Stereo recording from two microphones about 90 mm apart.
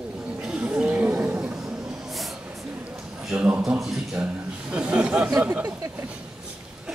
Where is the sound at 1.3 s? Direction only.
10° right (ahead or behind).